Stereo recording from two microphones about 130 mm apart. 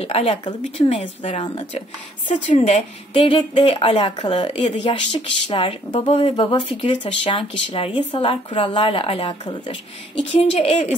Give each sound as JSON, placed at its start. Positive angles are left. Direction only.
{"t": 0.0, "sound": "speech", "side_deg": 50}
{"t": 2.5, "sound": "a woman's voice", "side_deg": 60}
{"t": 3.3, "sound": "speech", "side_deg": 45}
{"t": 10.3, "sound": "speech", "side_deg": 50}